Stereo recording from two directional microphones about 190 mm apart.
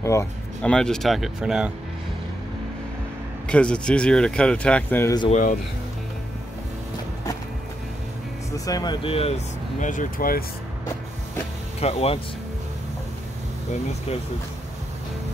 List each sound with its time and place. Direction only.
0.0 s speech: 15° left (ahead or behind); by 1.7 s 5° right (ahead or behind)
3.4 s speech: 5° left (ahead or behind)
5.3 s speech: 40° left (ahead or behind)
8.5 s speech: 20° left (ahead or behind)
9.8 s speech: 45° left (ahead or behind)
11.8 s speech: 30° left (ahead or behind)